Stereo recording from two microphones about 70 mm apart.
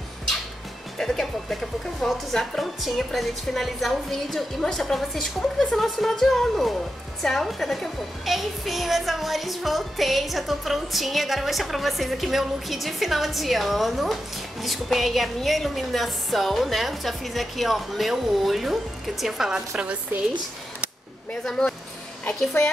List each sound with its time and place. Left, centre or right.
0.9 s a child's voice: centre
21.5 s speech: centre